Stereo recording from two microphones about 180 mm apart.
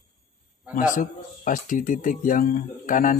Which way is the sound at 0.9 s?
45° left (ahead or behind).